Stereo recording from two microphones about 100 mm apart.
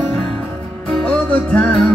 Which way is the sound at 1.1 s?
10° left (ahead or behind).